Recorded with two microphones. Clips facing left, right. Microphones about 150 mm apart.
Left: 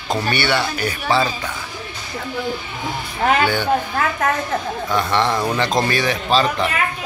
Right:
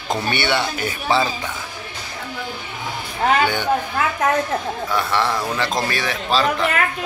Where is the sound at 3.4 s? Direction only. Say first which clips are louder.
Left 1 dB; 20° right (ahead or behind).